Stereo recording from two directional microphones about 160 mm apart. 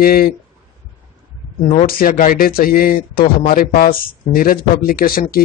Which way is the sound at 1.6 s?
45° left (ahead or behind).